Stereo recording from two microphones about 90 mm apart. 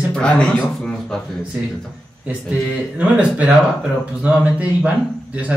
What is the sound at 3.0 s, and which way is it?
A man's voice, 15° right (ahead or behind).